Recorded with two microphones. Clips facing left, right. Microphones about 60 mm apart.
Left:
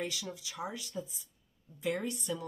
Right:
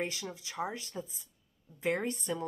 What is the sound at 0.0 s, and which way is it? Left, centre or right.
A woman's voice, right.